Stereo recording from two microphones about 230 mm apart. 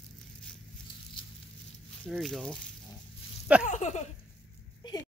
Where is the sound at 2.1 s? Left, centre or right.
Centre.